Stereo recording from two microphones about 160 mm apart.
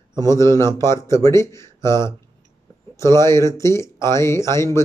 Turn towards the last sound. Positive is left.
turn(degrees=15)  # may be behind; listen again after turning